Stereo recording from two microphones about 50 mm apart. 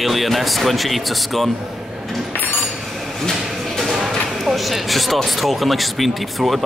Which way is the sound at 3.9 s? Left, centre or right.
Centre.